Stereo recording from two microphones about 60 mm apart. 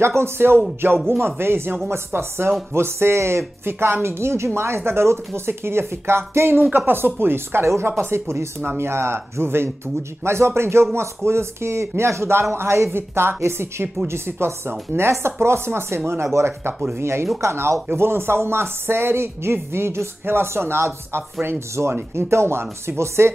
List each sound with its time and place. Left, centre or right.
0.2 s speech: right